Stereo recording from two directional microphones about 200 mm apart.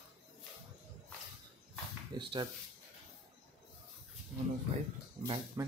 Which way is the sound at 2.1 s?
25° right (ahead or behind).